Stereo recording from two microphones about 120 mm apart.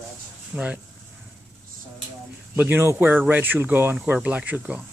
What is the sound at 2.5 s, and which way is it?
Speech, 20° right (ahead or behind).